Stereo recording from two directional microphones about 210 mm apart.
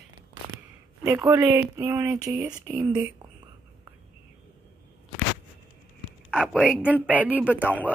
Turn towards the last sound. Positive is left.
turn(degrees=10)  # may be behind; listen again after turning